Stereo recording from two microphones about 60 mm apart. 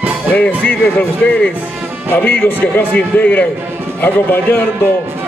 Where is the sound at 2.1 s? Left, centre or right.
Left.